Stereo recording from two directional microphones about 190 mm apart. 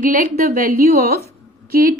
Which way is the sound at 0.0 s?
45° right (ahead or behind).